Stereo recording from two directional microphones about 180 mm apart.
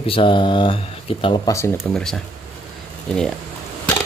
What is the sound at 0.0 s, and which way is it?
Speech, 30° left (ahead or behind).